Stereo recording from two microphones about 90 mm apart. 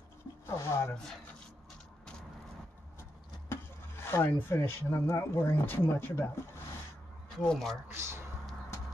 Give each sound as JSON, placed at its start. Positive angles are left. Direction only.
{"t": 0.7, "sound": "speech", "side_deg": 30}
{"t": 3.4, "sound": "speech", "side_deg": 30}
{"t": 7.3, "sound": "speech", "side_deg": 5}
{"t": 7.9, "sound": "speech", "side_deg": -30}